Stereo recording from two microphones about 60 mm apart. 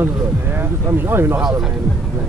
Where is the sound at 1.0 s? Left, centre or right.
Right.